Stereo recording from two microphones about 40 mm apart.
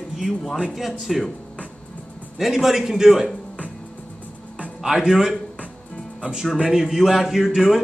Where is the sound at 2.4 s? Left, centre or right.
Centre.